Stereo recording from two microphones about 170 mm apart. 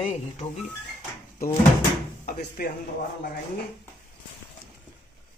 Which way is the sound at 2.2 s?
55° left (ahead or behind).